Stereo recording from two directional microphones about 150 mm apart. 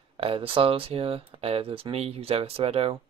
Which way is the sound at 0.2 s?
40° right (ahead or behind).